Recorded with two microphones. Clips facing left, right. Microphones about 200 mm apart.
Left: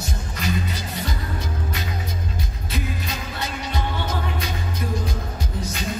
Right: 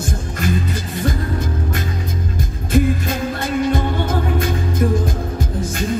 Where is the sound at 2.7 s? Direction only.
50° right (ahead or behind).